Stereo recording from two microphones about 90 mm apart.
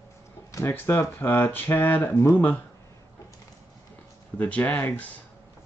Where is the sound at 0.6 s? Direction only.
25° left (ahead or behind).